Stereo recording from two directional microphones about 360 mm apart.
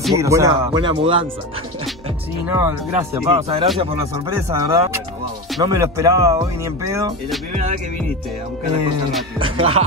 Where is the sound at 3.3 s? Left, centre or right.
Centre.